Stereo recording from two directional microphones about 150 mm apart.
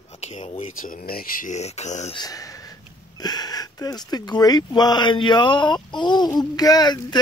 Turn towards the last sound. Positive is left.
turn(degrees=30)  # may be behind; listen again after turning